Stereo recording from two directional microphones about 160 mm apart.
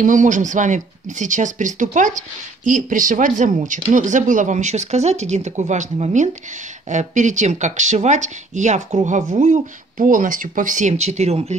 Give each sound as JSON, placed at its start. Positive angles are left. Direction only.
{"t": 0.0, "sound": "speech", "side_deg": -50}